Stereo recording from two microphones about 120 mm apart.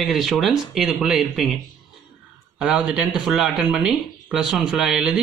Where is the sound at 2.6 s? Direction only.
10° right (ahead or behind).